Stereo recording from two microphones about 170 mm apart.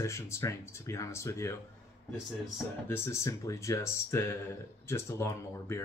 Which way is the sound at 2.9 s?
15° left (ahead or behind).